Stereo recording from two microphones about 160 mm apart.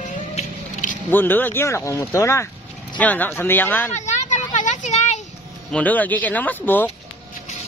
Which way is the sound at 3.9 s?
45° left (ahead or behind).